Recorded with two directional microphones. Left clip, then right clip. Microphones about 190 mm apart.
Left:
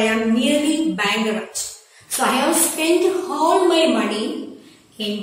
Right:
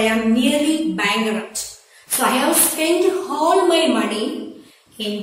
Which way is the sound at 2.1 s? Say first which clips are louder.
Right 1 dB; centre (ahead or behind).